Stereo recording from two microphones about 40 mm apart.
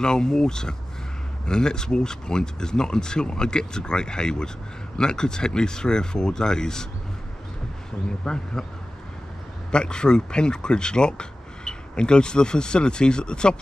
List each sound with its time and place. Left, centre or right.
0.0 s speech: centre
8.2 s speech: centre
9.7 s speech: left